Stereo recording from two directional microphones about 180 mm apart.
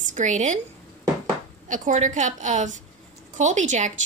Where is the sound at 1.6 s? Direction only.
45° right (ahead or behind).